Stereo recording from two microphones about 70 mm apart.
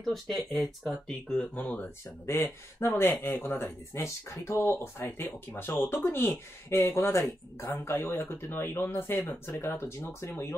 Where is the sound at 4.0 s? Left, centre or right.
Left.